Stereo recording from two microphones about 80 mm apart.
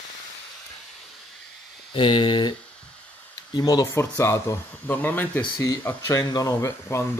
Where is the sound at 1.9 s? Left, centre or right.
Left.